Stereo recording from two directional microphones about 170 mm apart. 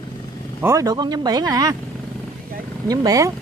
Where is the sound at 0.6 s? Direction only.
20° right (ahead or behind).